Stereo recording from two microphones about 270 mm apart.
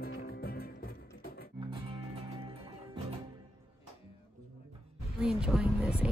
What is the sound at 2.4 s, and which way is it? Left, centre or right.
Music, right.